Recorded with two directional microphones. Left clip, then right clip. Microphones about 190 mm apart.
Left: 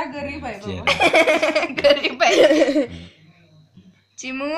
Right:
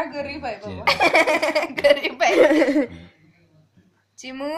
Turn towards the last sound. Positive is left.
turn(degrees=-10)  # may be behind; listen again after turning